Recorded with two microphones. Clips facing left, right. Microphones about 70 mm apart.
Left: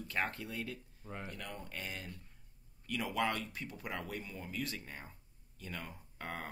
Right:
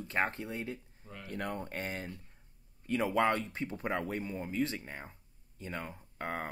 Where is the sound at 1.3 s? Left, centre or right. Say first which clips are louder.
Right 8 dB; right.